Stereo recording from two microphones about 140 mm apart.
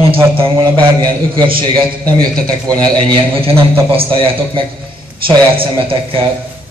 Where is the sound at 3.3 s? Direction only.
40° right (ahead or behind).